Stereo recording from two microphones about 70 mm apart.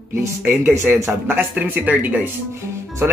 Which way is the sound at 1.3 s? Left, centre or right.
Right.